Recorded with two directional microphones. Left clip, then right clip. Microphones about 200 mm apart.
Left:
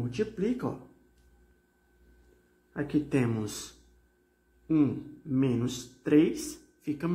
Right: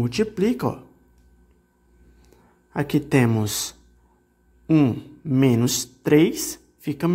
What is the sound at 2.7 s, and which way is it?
Speech, 45° right (ahead or behind).